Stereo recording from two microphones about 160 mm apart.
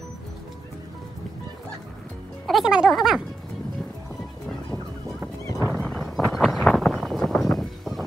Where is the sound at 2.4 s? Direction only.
Centre (ahead or behind).